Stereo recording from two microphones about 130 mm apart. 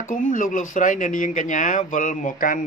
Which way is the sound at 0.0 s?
90° left.